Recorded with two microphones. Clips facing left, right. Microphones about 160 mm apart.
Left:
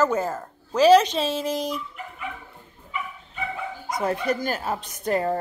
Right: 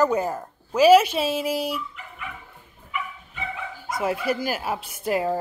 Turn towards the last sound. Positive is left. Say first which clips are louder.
# even
turn(degrees=-5)  # may be behind; listen again after turning